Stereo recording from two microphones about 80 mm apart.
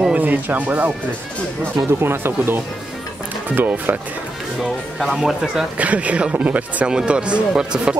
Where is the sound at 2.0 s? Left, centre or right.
Right.